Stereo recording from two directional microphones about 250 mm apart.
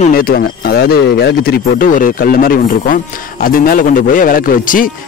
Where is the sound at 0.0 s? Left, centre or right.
Left.